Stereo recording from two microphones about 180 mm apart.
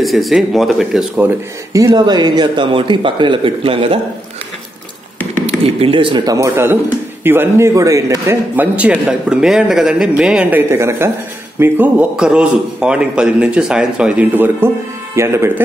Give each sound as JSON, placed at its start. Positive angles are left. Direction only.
{"t": 0.0, "sound": "speech", "side_deg": 0}
{"t": 5.8, "sound": "a man's voice", "side_deg": -30}